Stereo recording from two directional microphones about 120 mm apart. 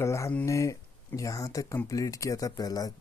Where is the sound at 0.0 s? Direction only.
25° left (ahead or behind).